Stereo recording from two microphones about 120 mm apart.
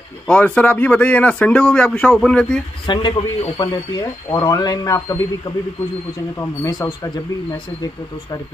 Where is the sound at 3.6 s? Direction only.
30° left (ahead or behind).